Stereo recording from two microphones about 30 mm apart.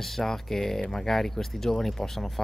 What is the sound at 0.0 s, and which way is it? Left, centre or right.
Speech, centre.